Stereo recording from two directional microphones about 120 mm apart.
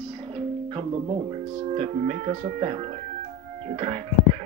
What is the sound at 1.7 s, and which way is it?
Speech, 65° right (ahead or behind).